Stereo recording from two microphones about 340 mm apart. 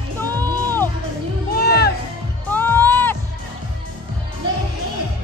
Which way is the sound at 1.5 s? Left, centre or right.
Left.